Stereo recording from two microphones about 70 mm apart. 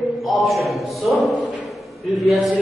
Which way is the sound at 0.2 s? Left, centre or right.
Centre.